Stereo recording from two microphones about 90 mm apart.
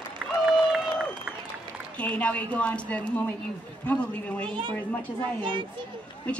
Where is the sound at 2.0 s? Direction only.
15° left (ahead or behind).